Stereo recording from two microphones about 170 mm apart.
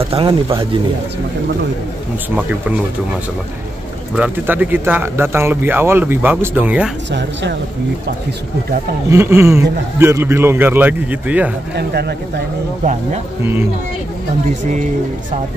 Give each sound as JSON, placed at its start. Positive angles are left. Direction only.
{"t": 0.1, "sound": "speech", "side_deg": -35}
{"t": 4.1, "sound": "speech", "side_deg": -10}
{"t": 7.1, "sound": "speech", "side_deg": -90}
{"t": 9.1, "sound": "speech", "side_deg": -15}
{"t": 11.7, "sound": "speech", "side_deg": -70}
{"t": 13.4, "sound": "speech", "side_deg": -15}